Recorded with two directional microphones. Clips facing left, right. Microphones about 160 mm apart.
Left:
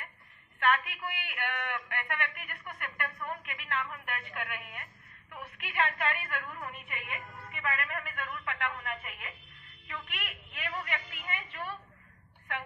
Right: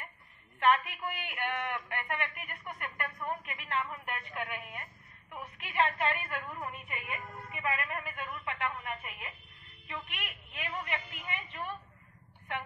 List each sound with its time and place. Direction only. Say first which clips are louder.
0.6 s a man's voice: right 2 dB; 35° right (ahead or behind)
10.5 s a man's voice: even; 25° right (ahead or behind)